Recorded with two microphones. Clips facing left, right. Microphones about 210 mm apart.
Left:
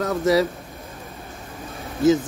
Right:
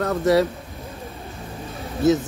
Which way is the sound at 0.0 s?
Centre (ahead or behind).